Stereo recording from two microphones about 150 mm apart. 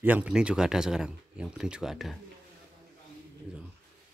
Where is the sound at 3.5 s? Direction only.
10° right (ahead or behind).